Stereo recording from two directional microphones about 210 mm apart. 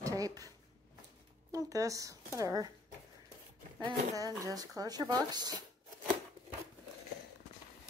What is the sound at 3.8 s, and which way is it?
A woman's voice, 20° right (ahead or behind).